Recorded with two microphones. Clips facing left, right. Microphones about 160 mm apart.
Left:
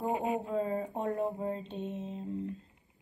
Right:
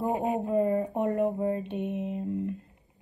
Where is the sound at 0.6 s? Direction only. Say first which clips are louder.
Right 7 dB; 65° right (ahead or behind).